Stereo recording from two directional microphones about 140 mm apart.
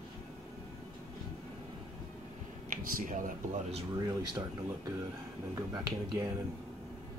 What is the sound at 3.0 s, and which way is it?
Speech, 70° right (ahead or behind).